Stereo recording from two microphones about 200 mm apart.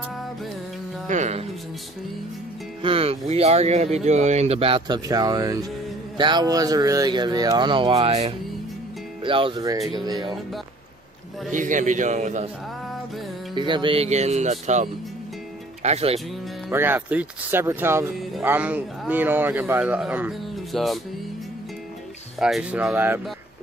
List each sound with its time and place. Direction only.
1.0 s speech: 35° right (ahead or behind)
2.8 s speech: 30° right (ahead or behind)
11.5 s speech: 40° right (ahead or behind)
13.6 s speech: 25° right (ahead or behind)
16.6 s speech: 10° right (ahead or behind)
22.4 s speech: 5° right (ahead or behind)